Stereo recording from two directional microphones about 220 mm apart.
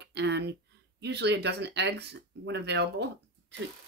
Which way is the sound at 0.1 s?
50° right (ahead or behind).